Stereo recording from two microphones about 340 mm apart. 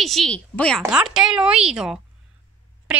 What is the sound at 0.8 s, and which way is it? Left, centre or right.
A woman's voice, centre.